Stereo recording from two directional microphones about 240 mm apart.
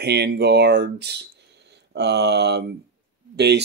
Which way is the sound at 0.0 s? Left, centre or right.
Right.